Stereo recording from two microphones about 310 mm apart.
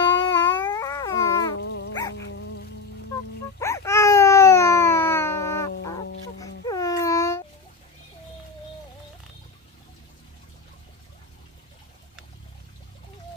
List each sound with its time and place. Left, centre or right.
0.2 s a sound: centre
1.6 s dog: left
3.5 s baby cry: centre